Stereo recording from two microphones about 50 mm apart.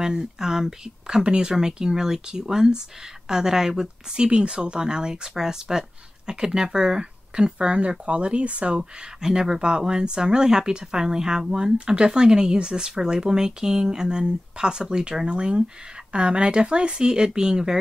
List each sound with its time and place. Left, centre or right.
0.0 s speech: centre